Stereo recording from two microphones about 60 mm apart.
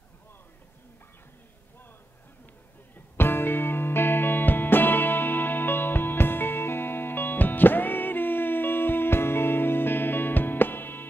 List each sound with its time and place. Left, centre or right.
3.2 s music: left